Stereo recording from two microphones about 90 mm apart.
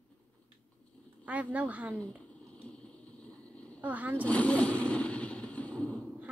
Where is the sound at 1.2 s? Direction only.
15° right (ahead or behind).